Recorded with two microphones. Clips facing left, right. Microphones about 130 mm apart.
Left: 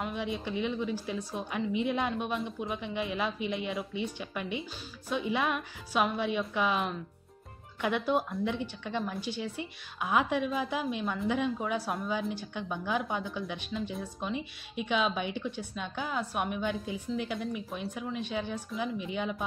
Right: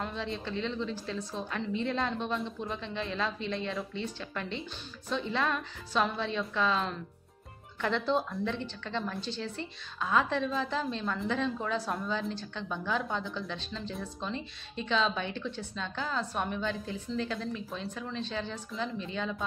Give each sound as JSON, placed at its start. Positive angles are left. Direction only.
{"t": 0.0, "sound": "speech", "side_deg": 15}